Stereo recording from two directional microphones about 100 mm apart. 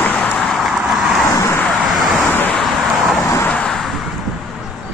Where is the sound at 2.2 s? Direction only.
15° left (ahead or behind).